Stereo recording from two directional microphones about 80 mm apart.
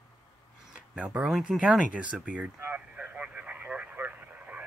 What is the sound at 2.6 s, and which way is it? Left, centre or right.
Radio, right.